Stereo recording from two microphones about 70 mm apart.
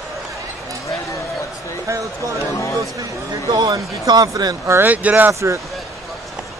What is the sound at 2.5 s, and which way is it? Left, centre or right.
Speech, left.